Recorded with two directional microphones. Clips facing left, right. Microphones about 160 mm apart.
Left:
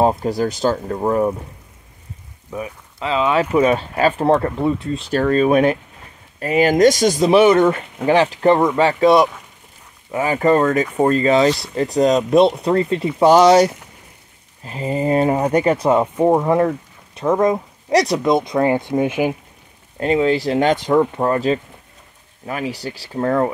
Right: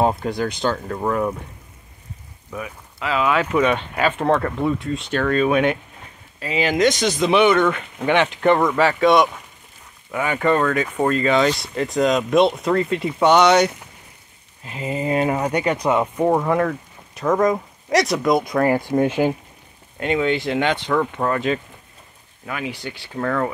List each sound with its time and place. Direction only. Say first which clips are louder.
0.2 s speech: left 4 dB; 35° left (ahead or behind)
0.8 s speech: left 4 dB; 25° left (ahead or behind)
2.5 s speech: left 3 dB; 30° left (ahead or behind)
15.9 s speech: left 2 dB; 25° left (ahead or behind)
20.0 s speech: left 4 dB; 35° left (ahead or behind)